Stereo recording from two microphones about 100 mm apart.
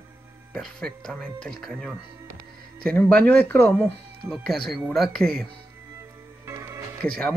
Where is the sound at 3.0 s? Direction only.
15° left (ahead or behind).